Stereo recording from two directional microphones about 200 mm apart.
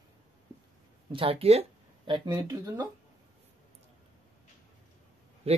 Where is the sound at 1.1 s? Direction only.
30° right (ahead or behind).